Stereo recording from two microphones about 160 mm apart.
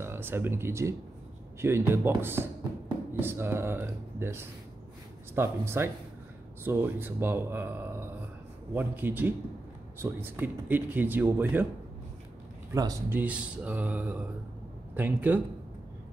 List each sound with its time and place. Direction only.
0.0 s speech: 15° right (ahead or behind)
12.7 s speech: 20° right (ahead or behind)
13.2 s speech: 10° right (ahead or behind)